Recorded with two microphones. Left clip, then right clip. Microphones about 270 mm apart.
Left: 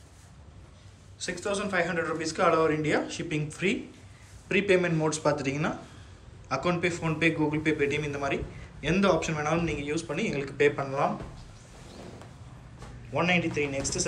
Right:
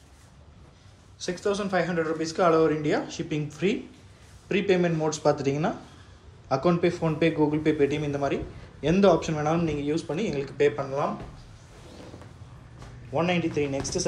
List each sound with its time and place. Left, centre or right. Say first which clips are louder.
1.2 s speech: right 3 dB; centre
13.1 s speech: right 1 dB; centre